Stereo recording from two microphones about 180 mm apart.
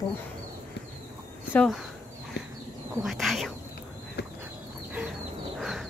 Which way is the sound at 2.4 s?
70° left (ahead or behind).